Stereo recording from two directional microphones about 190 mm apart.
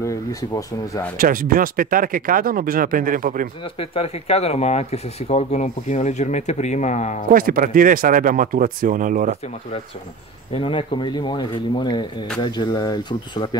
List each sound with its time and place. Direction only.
0.0 s speech: 15° left (ahead or behind)
1.1 s speech: 50° right (ahead or behind)
3.7 s speech: 30° left (ahead or behind)
7.2 s speech: 50° right (ahead or behind)
10.5 s speech: 30° left (ahead or behind)